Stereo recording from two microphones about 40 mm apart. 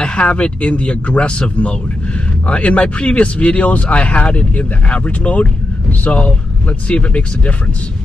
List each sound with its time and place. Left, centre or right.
0.0 s speech: left